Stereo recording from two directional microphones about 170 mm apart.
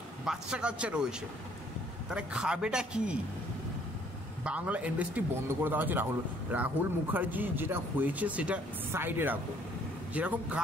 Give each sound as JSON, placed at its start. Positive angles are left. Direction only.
{"t": 0.2, "sound": "a man's voice", "side_deg": -5}
{"t": 2.0, "sound": "a man's voice", "side_deg": -5}
{"t": 4.5, "sound": "speech", "side_deg": -10}